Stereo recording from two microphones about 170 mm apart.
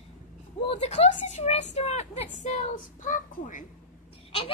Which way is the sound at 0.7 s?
40° left (ahead or behind).